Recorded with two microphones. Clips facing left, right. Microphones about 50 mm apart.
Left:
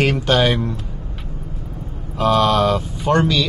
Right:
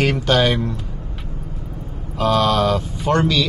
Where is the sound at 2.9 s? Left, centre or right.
Centre.